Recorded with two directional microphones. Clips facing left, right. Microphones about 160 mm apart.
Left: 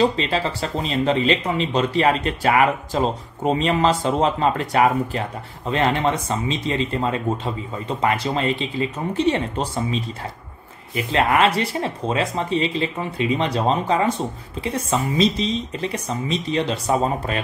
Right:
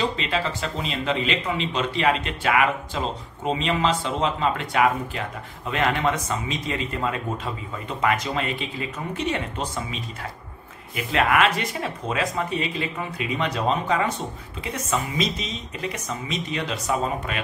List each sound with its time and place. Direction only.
0.0 s speech: 35° left (ahead or behind)
11.1 s speech: 30° left (ahead or behind)